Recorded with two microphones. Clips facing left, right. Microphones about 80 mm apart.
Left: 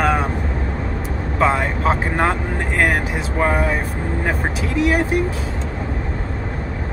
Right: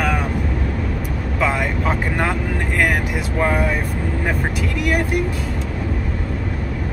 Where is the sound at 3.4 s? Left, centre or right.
Left.